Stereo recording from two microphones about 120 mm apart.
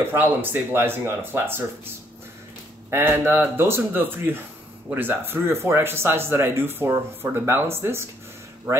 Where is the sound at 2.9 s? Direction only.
20° right (ahead or behind).